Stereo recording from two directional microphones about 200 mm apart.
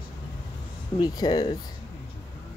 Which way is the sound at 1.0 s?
20° left (ahead or behind).